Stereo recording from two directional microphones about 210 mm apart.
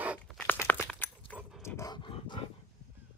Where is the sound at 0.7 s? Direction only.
5° left (ahead or behind); by 2.4 s 25° left (ahead or behind).